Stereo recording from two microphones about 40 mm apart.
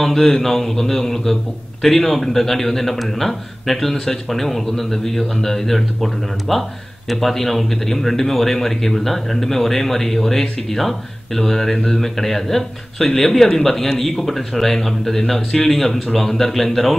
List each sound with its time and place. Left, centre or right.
0.0 s a man's voice: centre